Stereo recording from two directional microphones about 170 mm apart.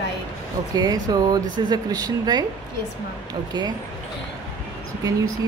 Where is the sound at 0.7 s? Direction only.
20° right (ahead or behind).